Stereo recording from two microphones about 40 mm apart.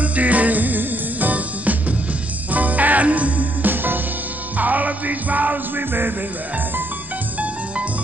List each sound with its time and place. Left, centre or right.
0.0 s music: right
3.7 s music: right
4.6 s music: right